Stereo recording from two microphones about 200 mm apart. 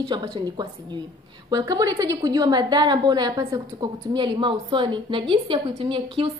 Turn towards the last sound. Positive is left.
turn(degrees=-25)  # may be behind; listen again after turning